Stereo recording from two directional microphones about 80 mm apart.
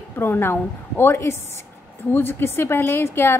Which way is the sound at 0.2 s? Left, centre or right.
Left.